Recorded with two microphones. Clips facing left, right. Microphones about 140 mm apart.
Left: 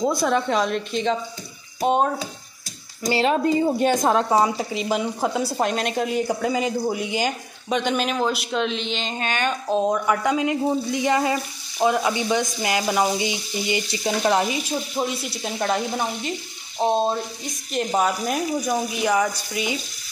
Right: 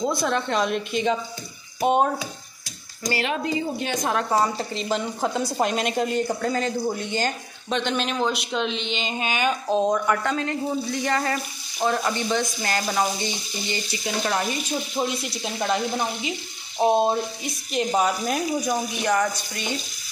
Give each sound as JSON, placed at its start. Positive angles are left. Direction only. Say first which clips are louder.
{"t": 0.2, "sound": "sizzle", "louder": "left 3 dB", "side_deg": 5}
{"t": 1.8, "sound": "speech", "louder": "even", "side_deg": -5}
{"t": 3.0, "sound": "frying", "louder": "left 5 dB", "side_deg": 30}
{"t": 4.3, "sound": "a woman's voice", "louder": "left 3 dB", "side_deg": 10}
{"t": 14.0, "sound": "frying", "louder": "left 5 dB", "side_deg": 25}
{"t": 14.5, "sound": "sizzle", "louder": "left 1 dB", "side_deg": 0}
{"t": 17.7, "sound": "sizzle", "louder": "even", "side_deg": 0}